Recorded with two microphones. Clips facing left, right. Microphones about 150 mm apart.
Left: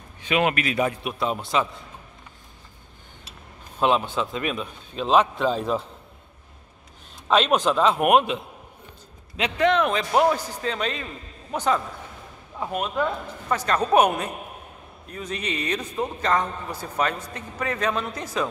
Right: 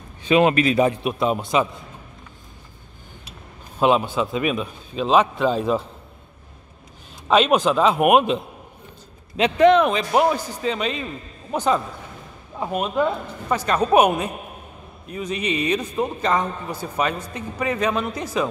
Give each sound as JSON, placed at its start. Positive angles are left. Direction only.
{"t": 0.2, "sound": "a man's voice", "side_deg": -30}
{"t": 3.8, "sound": "a man's voice", "side_deg": -10}
{"t": 7.2, "sound": "a man's voice", "side_deg": -5}
{"t": 9.4, "sound": "a man's voice", "side_deg": -15}
{"t": 11.5, "sound": "a man's voice", "side_deg": -25}